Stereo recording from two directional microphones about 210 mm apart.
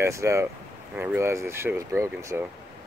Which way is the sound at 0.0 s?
15° right (ahead or behind).